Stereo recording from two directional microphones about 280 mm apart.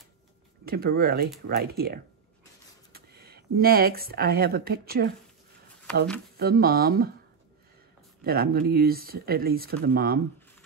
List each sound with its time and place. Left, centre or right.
0.7 s speech: right
6.3 s speech: right
8.2 s speech: right